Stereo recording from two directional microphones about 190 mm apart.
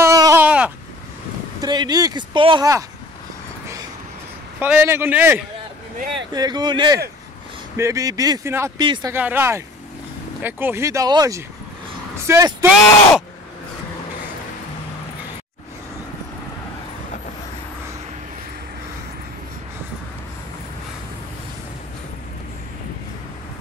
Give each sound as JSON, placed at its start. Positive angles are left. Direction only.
{"t": 0.0, "sound": "a sound", "side_deg": -15}
{"t": 1.6, "sound": "speech", "side_deg": -20}
{"t": 4.6, "sound": "speech", "side_deg": -10}
{"t": 6.3, "sound": "speech", "side_deg": -20}
{"t": 9.1, "sound": "speech", "side_deg": -10}